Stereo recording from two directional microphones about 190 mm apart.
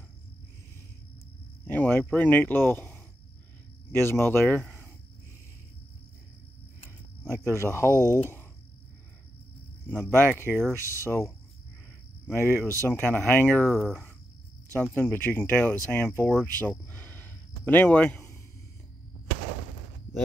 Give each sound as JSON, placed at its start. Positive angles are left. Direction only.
{"t": 1.7, "sound": "speech", "side_deg": 10}
{"t": 7.2, "sound": "speech", "side_deg": 15}
{"t": 7.9, "sound": "speech", "side_deg": -15}
{"t": 10.1, "sound": "speech", "side_deg": 10}
{"t": 12.5, "sound": "speech", "side_deg": -15}
{"t": 12.8, "sound": "speech", "side_deg": 10}